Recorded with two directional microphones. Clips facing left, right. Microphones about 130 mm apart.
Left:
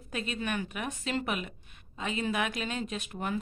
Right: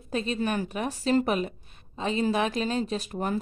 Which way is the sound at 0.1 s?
35° right (ahead or behind).